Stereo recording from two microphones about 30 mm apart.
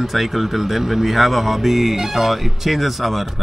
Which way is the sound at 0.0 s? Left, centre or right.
Centre.